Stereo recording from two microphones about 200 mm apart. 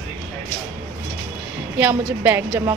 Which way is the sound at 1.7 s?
10° right (ahead or behind).